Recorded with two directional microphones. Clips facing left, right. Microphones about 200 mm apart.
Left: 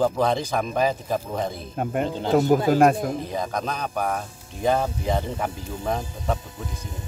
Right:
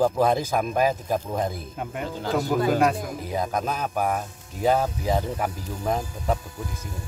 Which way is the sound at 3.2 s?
5° right (ahead or behind).